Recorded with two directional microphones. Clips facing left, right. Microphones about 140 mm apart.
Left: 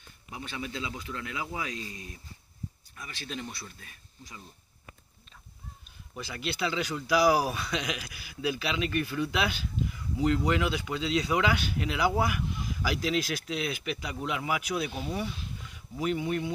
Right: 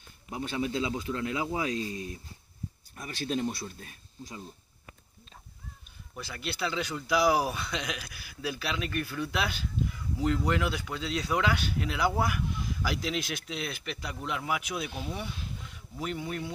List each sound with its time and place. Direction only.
0.3 s speech: 40° right (ahead or behind)
6.1 s speech: 10° left (ahead or behind)